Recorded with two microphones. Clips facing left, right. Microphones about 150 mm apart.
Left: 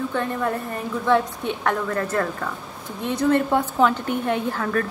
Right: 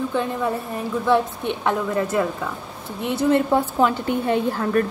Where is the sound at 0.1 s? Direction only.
10° right (ahead or behind).